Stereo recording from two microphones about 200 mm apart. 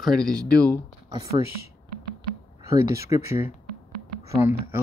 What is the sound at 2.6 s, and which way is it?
Speech, 15° right (ahead or behind).